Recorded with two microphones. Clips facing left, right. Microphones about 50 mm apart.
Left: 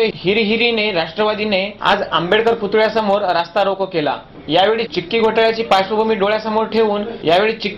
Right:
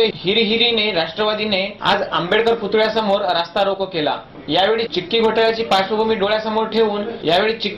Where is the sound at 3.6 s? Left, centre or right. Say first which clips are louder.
Left 2 dB; left.